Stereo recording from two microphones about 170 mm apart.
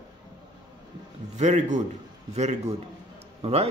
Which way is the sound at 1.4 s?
45° right (ahead or behind).